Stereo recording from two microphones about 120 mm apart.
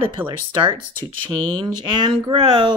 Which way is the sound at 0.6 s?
40° right (ahead or behind).